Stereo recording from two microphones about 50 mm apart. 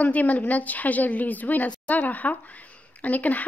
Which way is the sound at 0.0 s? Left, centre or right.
Left.